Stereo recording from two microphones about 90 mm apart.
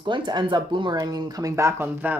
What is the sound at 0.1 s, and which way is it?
Speech, 60° right (ahead or behind).